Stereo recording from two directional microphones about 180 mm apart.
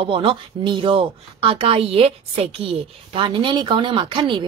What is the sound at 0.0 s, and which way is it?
Speech, 30° right (ahead or behind).